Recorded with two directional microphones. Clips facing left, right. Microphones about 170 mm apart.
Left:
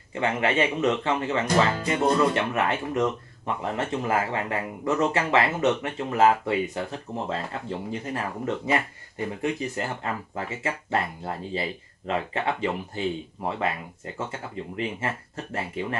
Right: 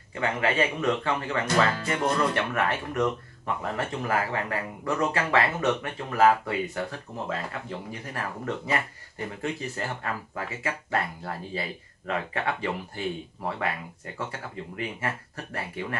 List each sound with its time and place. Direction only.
0.2 s speech: 25° left (ahead or behind)